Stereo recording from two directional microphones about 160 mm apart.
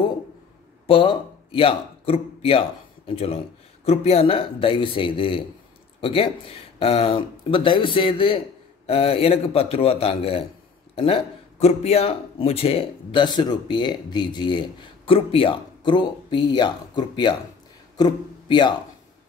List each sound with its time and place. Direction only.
0.8 s speech: 35° left (ahead or behind)
11.6 s speech: 40° left (ahead or behind)